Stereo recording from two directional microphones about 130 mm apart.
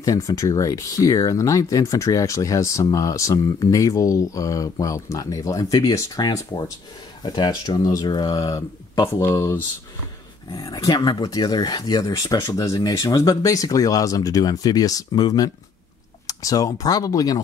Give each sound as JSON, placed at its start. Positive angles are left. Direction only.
{"t": 0.0, "sound": "speech", "side_deg": 25}